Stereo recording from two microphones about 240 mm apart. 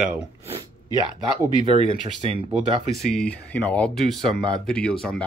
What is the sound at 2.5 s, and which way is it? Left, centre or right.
Speech, right.